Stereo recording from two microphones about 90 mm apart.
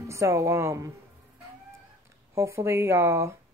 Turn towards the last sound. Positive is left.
turn(degrees=-30)  # may be behind; listen again after turning